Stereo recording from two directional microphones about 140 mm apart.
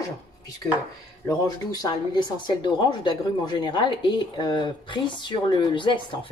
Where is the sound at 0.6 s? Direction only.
15° left (ahead or behind).